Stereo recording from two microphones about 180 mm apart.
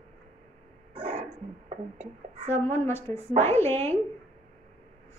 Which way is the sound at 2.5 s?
15° left (ahead or behind).